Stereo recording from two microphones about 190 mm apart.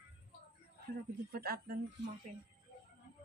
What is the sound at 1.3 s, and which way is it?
Speech, 55° right (ahead or behind).